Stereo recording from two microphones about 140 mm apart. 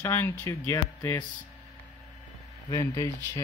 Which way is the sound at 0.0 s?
15° left (ahead or behind).